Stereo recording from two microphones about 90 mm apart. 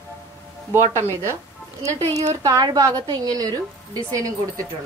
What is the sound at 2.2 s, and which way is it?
A woman's voice, 40° right (ahead or behind).